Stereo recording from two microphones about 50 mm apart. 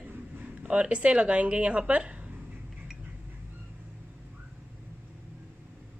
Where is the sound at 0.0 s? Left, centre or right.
Right.